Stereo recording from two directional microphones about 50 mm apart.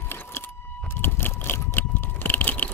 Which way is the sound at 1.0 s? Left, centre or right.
Left.